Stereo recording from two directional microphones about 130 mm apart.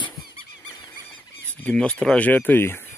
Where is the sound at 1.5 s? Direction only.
10° left (ahead or behind).